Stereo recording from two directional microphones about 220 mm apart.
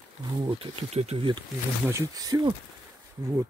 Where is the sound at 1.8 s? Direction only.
15° right (ahead or behind).